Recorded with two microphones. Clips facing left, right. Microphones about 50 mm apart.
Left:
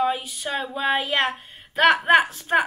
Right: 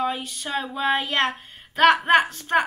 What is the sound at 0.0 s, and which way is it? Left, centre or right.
A woman's voice, centre.